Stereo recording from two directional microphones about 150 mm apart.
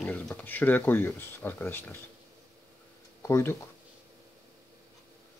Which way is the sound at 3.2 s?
15° left (ahead or behind).